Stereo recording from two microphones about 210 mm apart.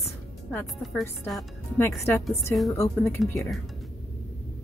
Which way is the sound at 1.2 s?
Centre (ahead or behind).